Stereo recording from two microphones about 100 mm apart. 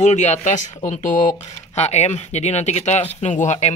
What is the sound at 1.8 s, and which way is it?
Speech, 90° left.